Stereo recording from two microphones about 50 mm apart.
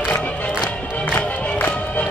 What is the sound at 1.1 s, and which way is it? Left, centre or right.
Music, left.